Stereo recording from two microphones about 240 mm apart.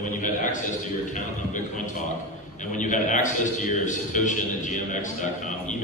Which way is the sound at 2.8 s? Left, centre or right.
Left.